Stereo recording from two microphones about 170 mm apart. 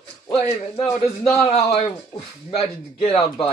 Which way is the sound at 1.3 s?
35° left (ahead or behind).